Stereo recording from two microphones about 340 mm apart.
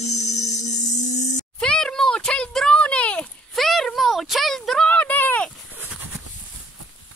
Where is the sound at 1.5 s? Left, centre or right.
Centre.